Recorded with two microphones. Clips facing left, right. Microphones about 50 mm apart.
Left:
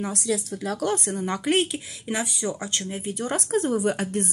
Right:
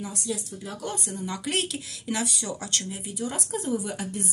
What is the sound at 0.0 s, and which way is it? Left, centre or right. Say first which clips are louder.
A woman's voice: left 6 dB; left.